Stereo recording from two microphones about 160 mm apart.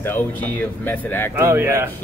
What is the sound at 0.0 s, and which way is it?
Speech, 10° left (ahead or behind).